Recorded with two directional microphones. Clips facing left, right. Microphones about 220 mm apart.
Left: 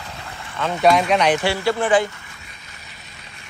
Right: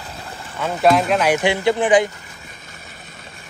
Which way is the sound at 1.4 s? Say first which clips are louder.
Right 3 dB; 15° right (ahead or behind).